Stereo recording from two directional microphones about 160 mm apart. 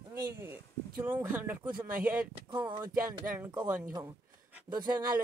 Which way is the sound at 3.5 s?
10° right (ahead or behind).